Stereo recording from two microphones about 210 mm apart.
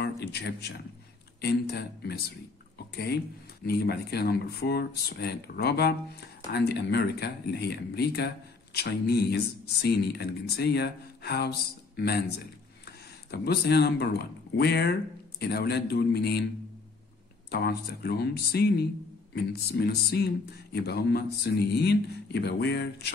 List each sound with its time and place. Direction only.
0.0 s a man's voice: 50° left (ahead or behind)
3.6 s speech: 50° left (ahead or behind)
17.5 s speech: 50° left (ahead or behind)